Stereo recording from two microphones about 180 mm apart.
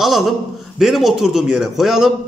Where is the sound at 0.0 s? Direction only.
Centre (ahead or behind).